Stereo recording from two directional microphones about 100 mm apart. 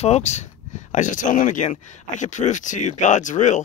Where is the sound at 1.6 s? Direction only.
65° left (ahead or behind).